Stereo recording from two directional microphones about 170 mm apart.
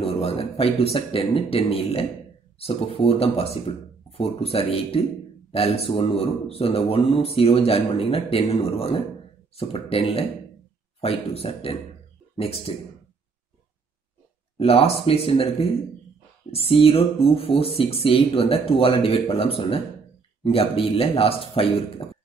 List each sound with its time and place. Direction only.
0.0 s a man's voice: 35° left (ahead or behind)
14.6 s a man's voice: 35° left (ahead or behind)